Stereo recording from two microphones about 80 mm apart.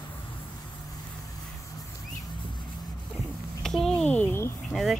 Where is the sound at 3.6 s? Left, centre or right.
Centre.